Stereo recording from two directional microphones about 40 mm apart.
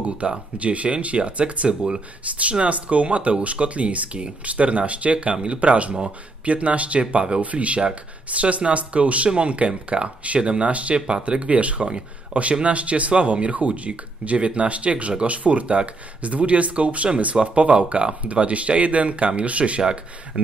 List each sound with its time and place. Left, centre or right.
0.2 s speech: right